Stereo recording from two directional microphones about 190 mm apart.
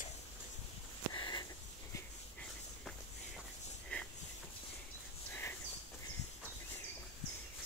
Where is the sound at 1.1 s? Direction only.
25° left (ahead or behind).